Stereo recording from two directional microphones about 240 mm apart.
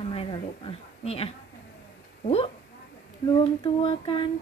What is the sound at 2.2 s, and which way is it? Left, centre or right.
Speech, left.